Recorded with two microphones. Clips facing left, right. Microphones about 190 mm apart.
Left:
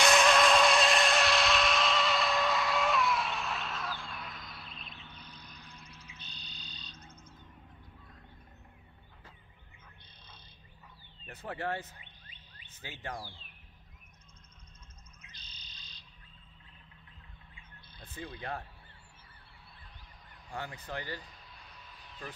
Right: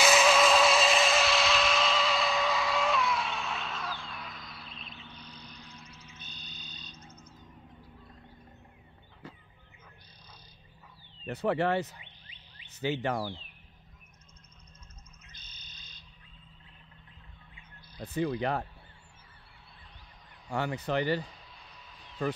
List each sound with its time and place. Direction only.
0.0 s vehicle: 5° right (ahead or behind)
6.1 s frog: 50° right (ahead or behind)
11.2 s speech: 75° right (ahead or behind)
15.2 s frog: 50° right (ahead or behind)
18.0 s speech: 70° right (ahead or behind)
20.4 s speech: 80° right